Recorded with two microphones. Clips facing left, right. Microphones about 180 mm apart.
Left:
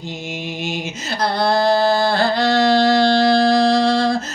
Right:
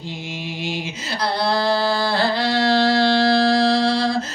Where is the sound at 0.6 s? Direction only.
45° left (ahead or behind).